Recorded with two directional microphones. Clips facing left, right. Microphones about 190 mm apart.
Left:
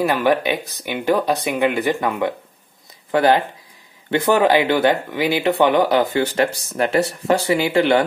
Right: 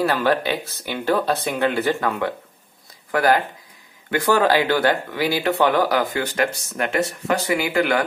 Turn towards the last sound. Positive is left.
turn(degrees=30)  # may be behind; listen again after turning